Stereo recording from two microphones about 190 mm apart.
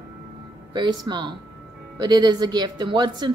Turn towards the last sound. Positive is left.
turn(degrees=-25)  # may be behind; listen again after turning